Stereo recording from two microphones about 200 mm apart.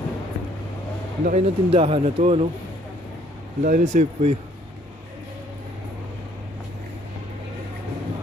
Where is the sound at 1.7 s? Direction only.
30° right (ahead or behind).